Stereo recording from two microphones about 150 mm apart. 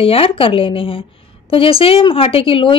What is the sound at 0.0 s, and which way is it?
Speech, 40° left (ahead or behind).